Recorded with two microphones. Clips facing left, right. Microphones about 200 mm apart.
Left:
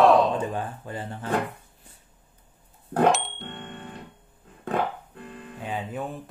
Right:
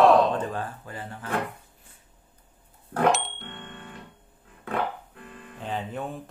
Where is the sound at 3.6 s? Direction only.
30° left (ahead or behind).